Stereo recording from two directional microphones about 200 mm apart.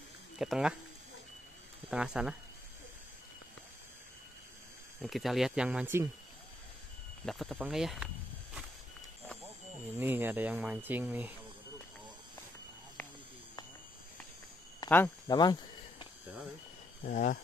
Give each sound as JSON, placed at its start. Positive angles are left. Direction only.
{"t": 0.4, "sound": "speech", "side_deg": -5}
{"t": 1.9, "sound": "speech", "side_deg": -5}
{"t": 5.0, "sound": "speech", "side_deg": 0}
{"t": 7.2, "sound": "speech", "side_deg": 0}
{"t": 9.9, "sound": "speech", "side_deg": -10}
{"t": 14.8, "sound": "speech", "side_deg": 15}
{"t": 17.0, "sound": "speech", "side_deg": 40}